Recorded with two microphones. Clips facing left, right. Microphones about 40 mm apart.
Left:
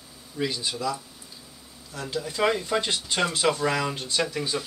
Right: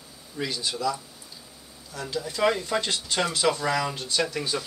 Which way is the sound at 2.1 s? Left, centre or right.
Centre.